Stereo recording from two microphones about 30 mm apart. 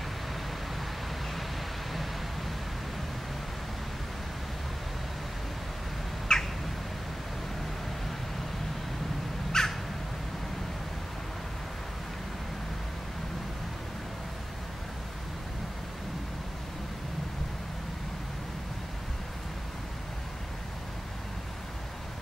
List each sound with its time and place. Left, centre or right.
0.7 s vehicle: centre
6.3 s squawk: left
9.5 s crow: left